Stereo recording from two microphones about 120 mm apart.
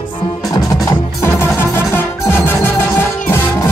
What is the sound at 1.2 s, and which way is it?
Music, 15° left (ahead or behind).